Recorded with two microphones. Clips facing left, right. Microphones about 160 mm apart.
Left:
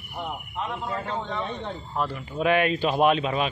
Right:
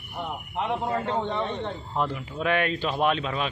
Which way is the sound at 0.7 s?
20° right (ahead or behind).